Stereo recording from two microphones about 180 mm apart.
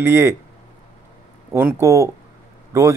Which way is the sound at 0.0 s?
15° right (ahead or behind).